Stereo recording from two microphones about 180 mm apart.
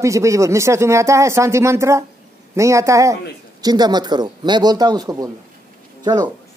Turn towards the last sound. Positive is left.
turn(degrees=-25)  # may be behind; listen again after turning